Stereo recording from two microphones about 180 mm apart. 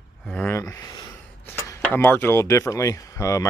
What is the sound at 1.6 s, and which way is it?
Speech, 10° left (ahead or behind).